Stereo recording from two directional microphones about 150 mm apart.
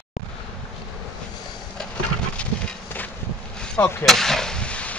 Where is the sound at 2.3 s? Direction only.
10° left (ahead or behind).